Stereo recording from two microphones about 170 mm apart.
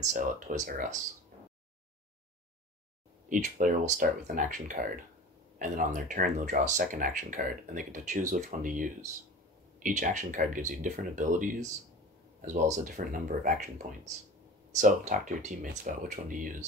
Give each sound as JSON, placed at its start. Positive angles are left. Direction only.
{"t": 0.1, "sound": "speech", "side_deg": -50}
{"t": 3.3, "sound": "speech", "side_deg": -50}
{"t": 14.8, "sound": "speech", "side_deg": -50}